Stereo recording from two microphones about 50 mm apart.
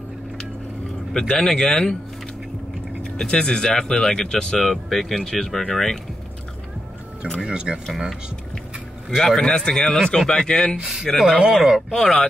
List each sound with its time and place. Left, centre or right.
1.1 s speech: centre
3.0 s speech: centre
7.3 s speech: centre
9.1 s speech: centre
10.8 s speech: centre
11.9 s speech: centre